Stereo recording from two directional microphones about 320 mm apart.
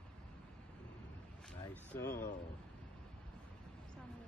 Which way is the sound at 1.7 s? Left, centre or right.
Centre.